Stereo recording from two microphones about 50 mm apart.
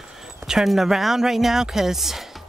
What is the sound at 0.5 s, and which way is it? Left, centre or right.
Speech, centre.